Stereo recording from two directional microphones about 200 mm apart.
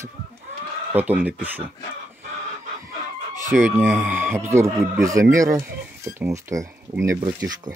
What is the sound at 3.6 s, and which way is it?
Speech, 10° right (ahead or behind).